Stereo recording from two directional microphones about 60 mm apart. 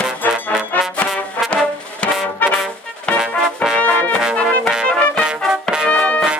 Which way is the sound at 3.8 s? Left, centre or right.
Left.